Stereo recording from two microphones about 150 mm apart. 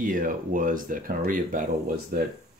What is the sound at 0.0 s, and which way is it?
Speech, 65° right (ahead or behind).